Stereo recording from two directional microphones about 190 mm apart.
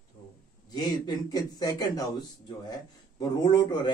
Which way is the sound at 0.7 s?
20° left (ahead or behind).